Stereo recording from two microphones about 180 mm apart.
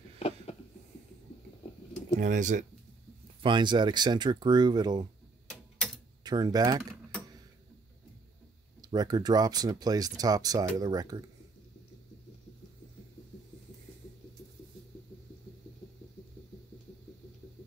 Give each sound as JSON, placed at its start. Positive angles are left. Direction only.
{"t": 2.1, "sound": "speech", "side_deg": -45}
{"t": 3.4, "sound": "speech", "side_deg": -25}
{"t": 6.2, "sound": "speech", "side_deg": -20}
{"t": 8.8, "sound": "speech", "side_deg": -20}